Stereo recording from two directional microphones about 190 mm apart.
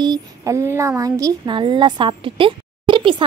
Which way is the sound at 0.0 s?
20° right (ahead or behind).